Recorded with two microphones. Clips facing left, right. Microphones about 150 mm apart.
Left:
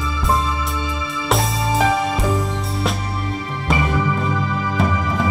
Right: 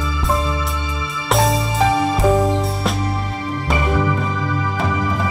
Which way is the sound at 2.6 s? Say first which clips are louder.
Right 2 dB; centre (ahead or behind).